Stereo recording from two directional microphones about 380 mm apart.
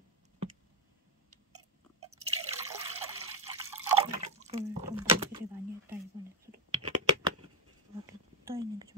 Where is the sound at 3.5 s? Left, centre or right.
Centre.